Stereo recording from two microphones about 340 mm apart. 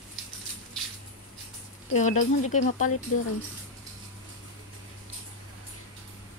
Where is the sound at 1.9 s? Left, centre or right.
Left.